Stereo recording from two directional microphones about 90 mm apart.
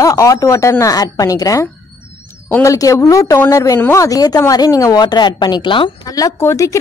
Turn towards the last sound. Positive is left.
turn(degrees=35)  # may be behind; listen again after turning